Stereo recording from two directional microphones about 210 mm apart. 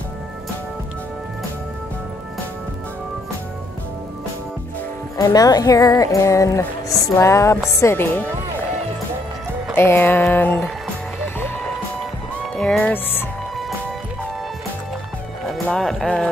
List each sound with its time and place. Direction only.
5.1 s speech: 15° left (ahead or behind)
9.8 s speech: 10° left (ahead or behind)
12.5 s speech: 5° left (ahead or behind)
15.5 s speech: centre (ahead or behind)